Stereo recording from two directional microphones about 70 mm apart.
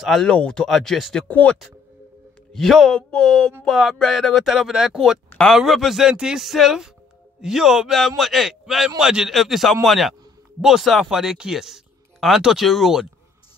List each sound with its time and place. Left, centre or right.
0.0 s speech: centre
1.2 s speech: left
2.5 s speech: centre
3.0 s a man's voice: centre